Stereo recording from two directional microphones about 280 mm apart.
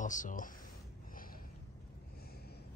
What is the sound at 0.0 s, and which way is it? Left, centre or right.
Speech, left.